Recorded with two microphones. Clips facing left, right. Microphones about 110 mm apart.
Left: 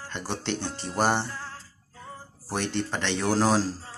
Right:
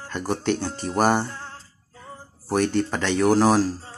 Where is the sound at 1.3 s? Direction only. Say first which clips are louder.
Right 1 dB; 25° right (ahead or behind).